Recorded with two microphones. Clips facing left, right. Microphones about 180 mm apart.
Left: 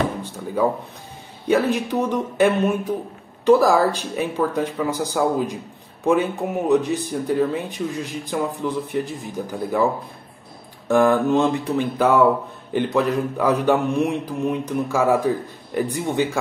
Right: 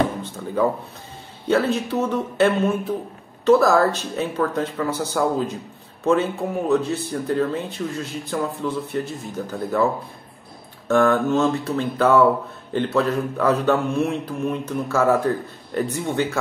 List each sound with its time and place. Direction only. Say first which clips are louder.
0.6 s speech: even; 10° left (ahead or behind)
10.9 s speech: left 1 dB; 15° left (ahead or behind)